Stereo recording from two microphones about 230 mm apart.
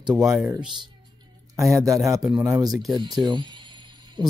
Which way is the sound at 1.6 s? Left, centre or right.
Centre.